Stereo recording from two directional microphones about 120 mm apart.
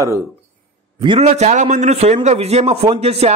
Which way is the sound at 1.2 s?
70° right (ahead or behind).